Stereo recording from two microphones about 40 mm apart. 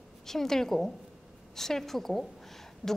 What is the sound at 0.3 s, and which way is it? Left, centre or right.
A woman's voice, centre.